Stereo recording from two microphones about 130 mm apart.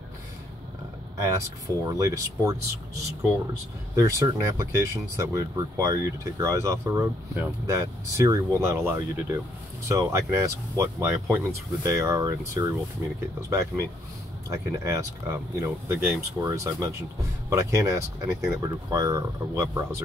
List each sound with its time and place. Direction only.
1.1 s a sound: 25° right (ahead or behind)
1.9 s speech: 25° right (ahead or behind)
3.9 s speech: 25° right (ahead or behind)